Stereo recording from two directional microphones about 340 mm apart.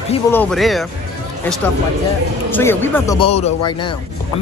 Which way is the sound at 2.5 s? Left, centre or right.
Centre.